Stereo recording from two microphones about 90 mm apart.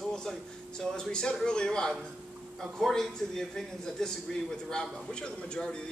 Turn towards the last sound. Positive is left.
turn(degrees=10)  # may be behind; listen again after turning